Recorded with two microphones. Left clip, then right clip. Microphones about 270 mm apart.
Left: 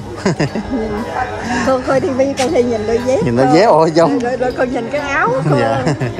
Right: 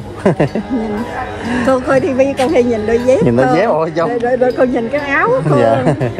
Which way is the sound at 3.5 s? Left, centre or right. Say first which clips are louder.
Left 3 dB; centre.